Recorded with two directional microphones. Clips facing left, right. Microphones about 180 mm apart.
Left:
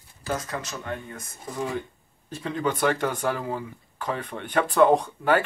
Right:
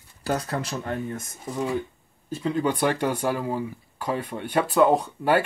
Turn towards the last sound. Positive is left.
turn(degrees=-10)  # may be behind; listen again after turning